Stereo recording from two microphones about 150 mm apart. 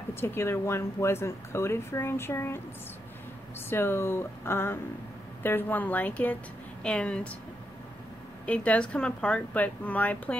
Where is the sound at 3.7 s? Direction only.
15° left (ahead or behind).